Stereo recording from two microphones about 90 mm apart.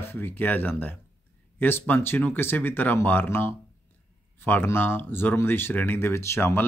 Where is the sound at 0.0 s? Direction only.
25° left (ahead or behind).